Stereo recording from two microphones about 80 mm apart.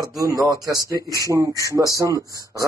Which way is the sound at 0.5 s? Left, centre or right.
Right.